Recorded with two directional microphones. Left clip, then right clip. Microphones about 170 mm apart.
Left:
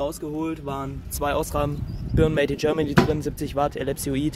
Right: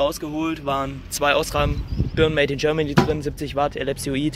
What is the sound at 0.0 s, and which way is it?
Speech, 5° right (ahead or behind).